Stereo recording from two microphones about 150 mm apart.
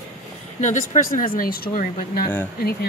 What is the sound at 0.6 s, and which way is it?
Speech, 55° left (ahead or behind).